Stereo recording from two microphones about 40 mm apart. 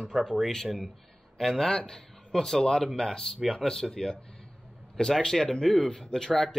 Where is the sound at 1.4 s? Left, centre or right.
Centre.